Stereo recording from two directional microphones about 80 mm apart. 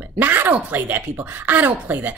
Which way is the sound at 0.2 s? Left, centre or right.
Right.